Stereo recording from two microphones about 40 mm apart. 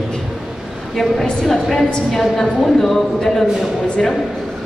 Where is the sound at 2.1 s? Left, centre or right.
Centre.